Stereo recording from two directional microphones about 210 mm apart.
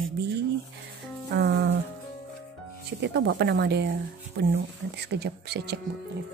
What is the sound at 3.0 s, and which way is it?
Speech, 55° right (ahead or behind).